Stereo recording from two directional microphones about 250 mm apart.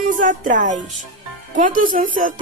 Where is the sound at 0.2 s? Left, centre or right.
Right.